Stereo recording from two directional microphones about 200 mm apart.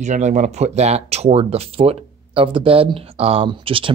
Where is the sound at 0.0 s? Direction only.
35° right (ahead or behind).